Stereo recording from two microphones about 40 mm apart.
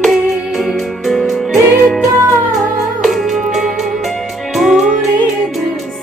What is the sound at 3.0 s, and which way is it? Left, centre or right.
Music, centre.